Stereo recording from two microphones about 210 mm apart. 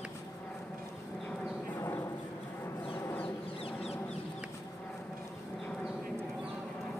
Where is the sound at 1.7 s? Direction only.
15° left (ahead or behind).